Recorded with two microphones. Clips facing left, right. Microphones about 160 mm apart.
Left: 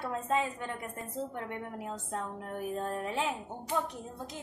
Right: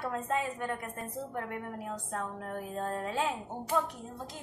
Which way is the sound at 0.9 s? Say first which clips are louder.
Even; 25° left (ahead or behind).